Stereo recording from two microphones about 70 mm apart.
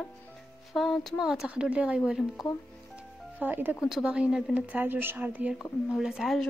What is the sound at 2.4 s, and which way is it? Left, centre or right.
Speech, centre.